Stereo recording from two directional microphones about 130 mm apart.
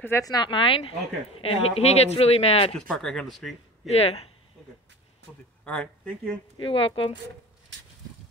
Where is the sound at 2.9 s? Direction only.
5° left (ahead or behind).